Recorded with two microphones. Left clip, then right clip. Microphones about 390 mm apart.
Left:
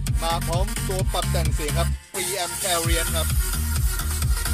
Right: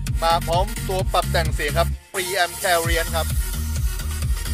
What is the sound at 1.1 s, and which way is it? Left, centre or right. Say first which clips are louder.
Music: right 9 dB; centre.